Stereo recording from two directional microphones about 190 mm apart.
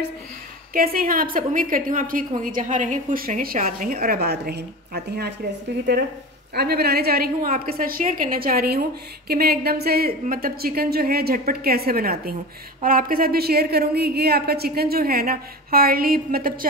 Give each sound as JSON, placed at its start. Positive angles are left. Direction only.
{"t": 0.7, "sound": "a woman's voice", "side_deg": -50}
{"t": 6.5, "sound": "a woman's voice", "side_deg": -55}